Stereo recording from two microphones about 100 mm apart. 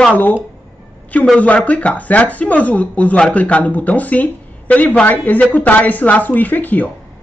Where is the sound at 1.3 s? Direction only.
15° left (ahead or behind).